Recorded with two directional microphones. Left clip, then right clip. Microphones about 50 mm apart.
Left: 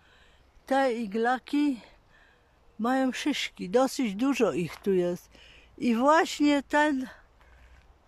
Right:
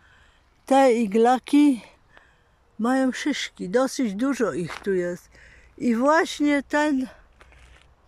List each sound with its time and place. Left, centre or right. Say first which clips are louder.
0.8 s speech: right 9 dB; right
2.8 s speech: right 4 dB; centre
3.1 s speech: right 3 dB; centre
4.3 s speech: left 2 dB; left
5.8 s speech: right 3 dB; centre
6.0 s speech: right 2 dB; centre
6.8 s speech: right 2 dB; centre